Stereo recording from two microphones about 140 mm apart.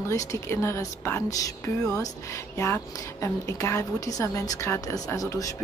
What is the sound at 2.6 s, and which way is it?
A woman's voice, 20° left (ahead or behind).